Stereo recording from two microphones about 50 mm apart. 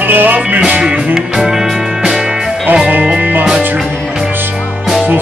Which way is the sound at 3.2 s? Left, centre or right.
Right.